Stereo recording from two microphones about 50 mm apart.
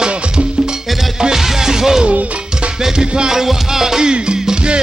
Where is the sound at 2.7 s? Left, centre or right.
Centre.